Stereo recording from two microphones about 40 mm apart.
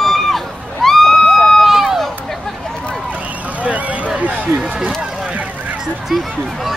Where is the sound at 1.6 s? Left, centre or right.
Centre.